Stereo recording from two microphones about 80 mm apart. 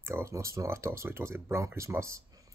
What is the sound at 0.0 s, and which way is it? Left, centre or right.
Speech, right.